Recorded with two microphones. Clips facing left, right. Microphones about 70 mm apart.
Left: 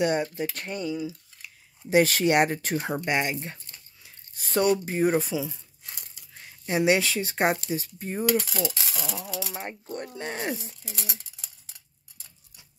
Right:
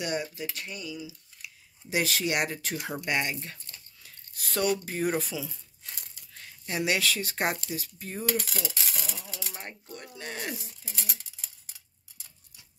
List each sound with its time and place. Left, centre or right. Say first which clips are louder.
0.0 s speech: left 7 dB; left
3.1 s speech: left 1 dB; left
9.9 s speech: left 6 dB; left
11.0 s a sound: left 1 dB; left